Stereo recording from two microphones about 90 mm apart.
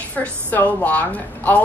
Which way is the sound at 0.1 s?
20° left (ahead or behind).